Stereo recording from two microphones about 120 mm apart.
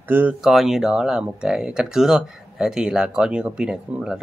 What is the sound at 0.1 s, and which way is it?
Speech, 15° right (ahead or behind).